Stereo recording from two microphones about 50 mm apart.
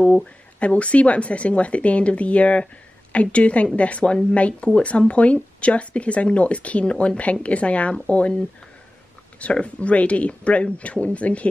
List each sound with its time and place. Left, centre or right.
0.0 s speech: left